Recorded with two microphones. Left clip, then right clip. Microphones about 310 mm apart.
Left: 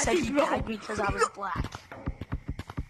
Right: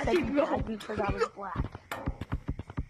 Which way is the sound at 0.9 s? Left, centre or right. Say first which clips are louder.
Left 1 dB; left.